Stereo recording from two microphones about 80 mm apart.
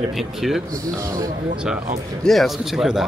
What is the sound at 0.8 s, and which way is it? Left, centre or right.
Speech, right.